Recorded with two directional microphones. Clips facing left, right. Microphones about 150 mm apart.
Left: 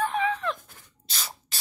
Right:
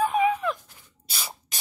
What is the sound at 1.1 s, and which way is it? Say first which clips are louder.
Spray: right 1 dB; 10° right (ahead or behind).